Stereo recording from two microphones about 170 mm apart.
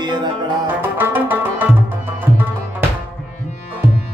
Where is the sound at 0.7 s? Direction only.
10° right (ahead or behind).